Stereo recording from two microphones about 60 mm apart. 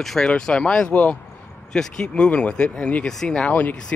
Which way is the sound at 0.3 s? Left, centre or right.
Centre.